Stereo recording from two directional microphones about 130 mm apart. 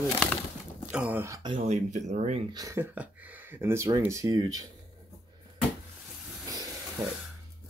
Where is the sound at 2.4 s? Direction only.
30° right (ahead or behind).